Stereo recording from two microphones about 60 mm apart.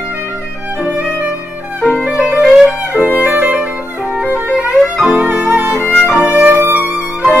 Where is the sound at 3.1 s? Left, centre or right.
Right.